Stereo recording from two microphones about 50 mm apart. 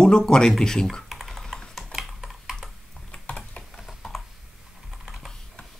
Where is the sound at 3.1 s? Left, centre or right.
Left.